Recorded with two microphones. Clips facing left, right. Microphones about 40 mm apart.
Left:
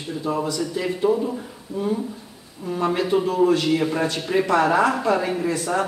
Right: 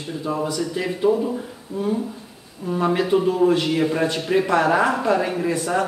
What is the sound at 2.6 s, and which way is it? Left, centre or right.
A man's voice, centre.